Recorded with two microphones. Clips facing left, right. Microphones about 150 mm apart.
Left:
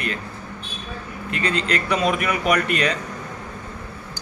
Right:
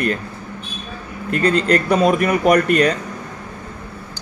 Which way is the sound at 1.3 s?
45° right (ahead or behind).